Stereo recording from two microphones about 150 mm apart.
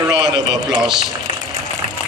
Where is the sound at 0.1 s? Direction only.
30° right (ahead or behind).